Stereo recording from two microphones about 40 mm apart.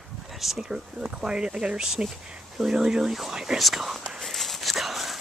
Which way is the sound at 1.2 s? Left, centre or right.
Centre.